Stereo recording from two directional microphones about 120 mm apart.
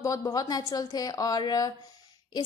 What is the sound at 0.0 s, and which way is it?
A woman's voice, 30° left (ahead or behind).